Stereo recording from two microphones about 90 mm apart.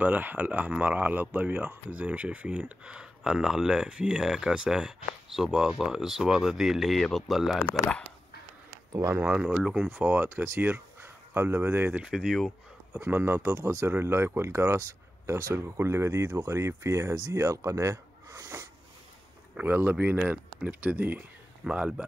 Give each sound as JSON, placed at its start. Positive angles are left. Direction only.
{"t": 0.0, "sound": "speech", "side_deg": -20}
{"t": 9.2, "sound": "speech", "side_deg": -10}
{"t": 9.9, "sound": "speech", "side_deg": -20}
{"t": 12.0, "sound": "speech", "side_deg": -5}
{"t": 13.0, "sound": "speech", "side_deg": -25}
{"t": 19.5, "sound": "speech", "side_deg": -20}